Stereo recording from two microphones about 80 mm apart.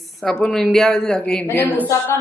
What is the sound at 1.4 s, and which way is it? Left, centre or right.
Speech, left.